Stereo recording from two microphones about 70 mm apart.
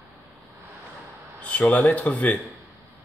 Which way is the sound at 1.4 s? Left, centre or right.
Left.